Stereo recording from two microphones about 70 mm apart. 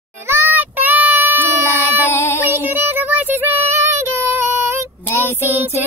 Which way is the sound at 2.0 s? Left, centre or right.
Left.